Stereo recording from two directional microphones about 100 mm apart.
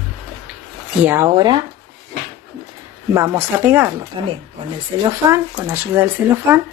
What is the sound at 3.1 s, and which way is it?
Speech, 25° right (ahead or behind).